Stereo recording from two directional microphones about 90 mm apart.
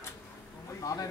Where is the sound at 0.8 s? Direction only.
45° left (ahead or behind).